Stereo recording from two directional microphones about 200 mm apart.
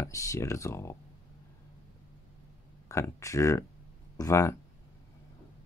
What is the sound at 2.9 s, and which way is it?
Speech, 15° left (ahead or behind).